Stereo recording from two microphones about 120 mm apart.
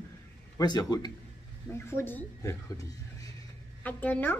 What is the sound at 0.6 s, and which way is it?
Speech, 35° left (ahead or behind).